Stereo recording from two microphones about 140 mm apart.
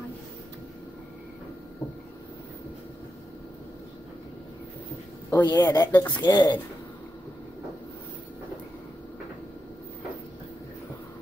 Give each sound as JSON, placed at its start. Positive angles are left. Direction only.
{"t": 5.3, "sound": "a woman's voice", "side_deg": 25}